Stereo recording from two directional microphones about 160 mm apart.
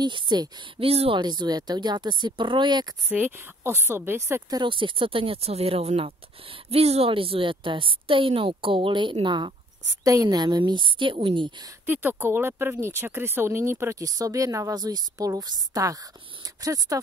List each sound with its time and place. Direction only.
0.0 s a woman's voice: 25° right (ahead or behind)
3.1 s speech: 10° right (ahead or behind); by 11.5 s 35° right (ahead or behind)
11.8 s a woman's voice: 10° right (ahead or behind)